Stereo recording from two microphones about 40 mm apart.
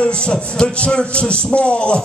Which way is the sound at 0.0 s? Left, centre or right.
Left.